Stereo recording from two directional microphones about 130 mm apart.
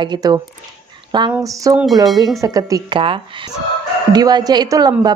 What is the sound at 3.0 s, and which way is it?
Speech, 40° right (ahead or behind).